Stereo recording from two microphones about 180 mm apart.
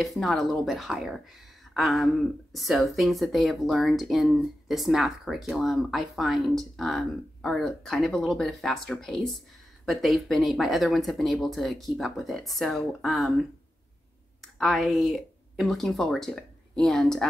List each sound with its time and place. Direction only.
0.0 s speech: centre (ahead or behind)